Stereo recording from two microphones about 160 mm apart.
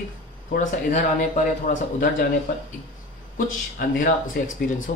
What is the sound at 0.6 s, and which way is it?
Speech, 55° left (ahead or behind).